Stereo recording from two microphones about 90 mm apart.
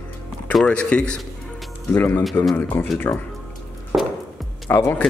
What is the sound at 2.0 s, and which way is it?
Speech, 25° left (ahead or behind).